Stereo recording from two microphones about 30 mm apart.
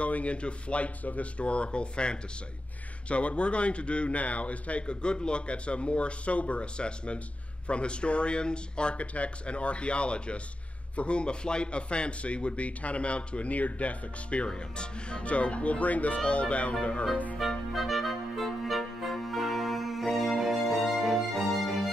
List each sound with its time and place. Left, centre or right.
0.0 s speech: left
4.8 s a man's voice: left
9.0 s a man's voice: left
13.5 s speech: left
14.5 s speech: left
16.3 s speech: left
17.4 s music: centre